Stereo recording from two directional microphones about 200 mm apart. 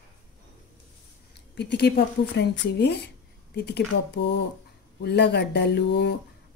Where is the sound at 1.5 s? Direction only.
55° left (ahead or behind).